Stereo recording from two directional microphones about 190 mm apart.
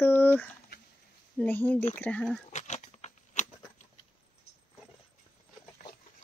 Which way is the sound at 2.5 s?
40° left (ahead or behind).